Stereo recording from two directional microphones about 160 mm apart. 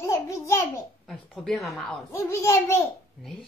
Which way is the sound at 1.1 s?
Centre (ahead or behind).